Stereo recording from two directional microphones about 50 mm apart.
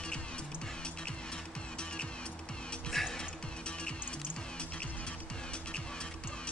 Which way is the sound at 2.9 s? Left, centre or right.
Centre.